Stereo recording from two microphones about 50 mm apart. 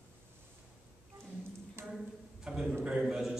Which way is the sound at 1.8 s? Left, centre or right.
Right.